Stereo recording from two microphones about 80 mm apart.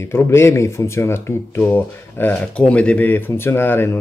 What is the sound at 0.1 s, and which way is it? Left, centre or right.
Speech, left.